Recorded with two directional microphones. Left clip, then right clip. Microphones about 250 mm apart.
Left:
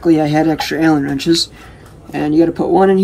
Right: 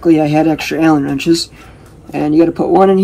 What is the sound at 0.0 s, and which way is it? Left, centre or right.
A man's voice, centre.